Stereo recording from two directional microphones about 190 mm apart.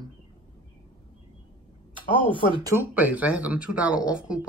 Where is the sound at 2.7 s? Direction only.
10° right (ahead or behind).